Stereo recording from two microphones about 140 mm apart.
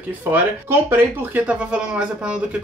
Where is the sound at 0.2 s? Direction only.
15° right (ahead or behind).